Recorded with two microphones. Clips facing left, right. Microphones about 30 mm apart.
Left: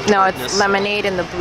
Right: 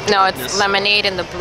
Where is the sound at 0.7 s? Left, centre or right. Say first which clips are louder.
Right 2 dB; right.